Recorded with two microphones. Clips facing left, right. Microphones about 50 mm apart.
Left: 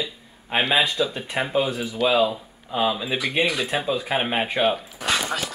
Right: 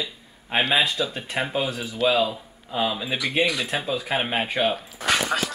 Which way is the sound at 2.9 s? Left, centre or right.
Centre.